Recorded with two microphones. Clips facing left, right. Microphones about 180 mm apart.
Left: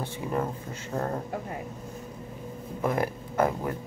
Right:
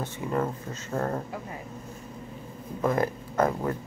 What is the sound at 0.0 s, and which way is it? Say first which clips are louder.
Speech: right 1 dB; 15° left (ahead or behind).